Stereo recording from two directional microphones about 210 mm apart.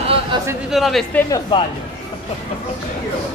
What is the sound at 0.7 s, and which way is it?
Speech, centre (ahead or behind).